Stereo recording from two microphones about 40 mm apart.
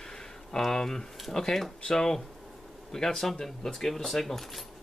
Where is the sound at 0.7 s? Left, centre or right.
Centre.